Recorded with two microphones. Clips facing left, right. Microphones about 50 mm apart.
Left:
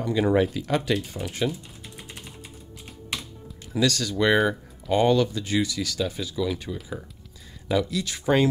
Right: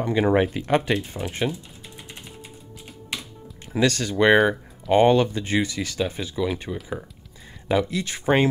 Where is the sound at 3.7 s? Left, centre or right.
Right.